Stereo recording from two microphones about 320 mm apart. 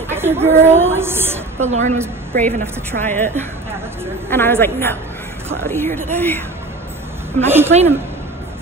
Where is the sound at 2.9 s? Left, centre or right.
Right.